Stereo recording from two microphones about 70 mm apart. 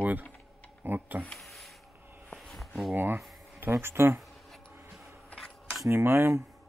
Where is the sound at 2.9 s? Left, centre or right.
Right.